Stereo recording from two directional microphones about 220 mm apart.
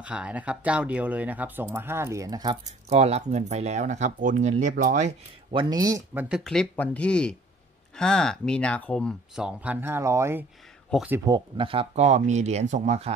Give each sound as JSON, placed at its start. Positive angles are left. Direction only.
{"t": 0.0, "sound": "speech", "side_deg": -5}
{"t": 2.9, "sound": "speech", "side_deg": -30}